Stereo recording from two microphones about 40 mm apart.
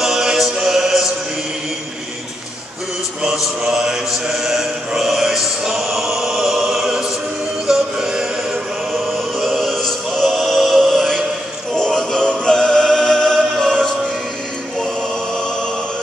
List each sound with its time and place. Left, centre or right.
0.0 s music: centre
3.2 s mantra: centre
4.3 s chant: centre
7.6 s music: centre
9.4 s choir: centre
11.7 s music: centre
12.9 s choir: centre